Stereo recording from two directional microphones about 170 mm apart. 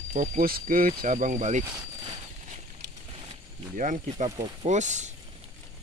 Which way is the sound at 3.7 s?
50° right (ahead or behind).